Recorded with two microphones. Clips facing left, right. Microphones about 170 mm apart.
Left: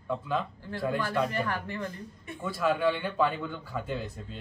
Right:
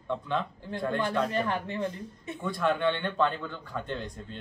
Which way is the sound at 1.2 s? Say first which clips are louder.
Right 2 dB; 20° right (ahead or behind).